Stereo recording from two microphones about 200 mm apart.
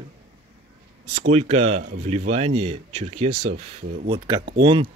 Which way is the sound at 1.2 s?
30° right (ahead or behind).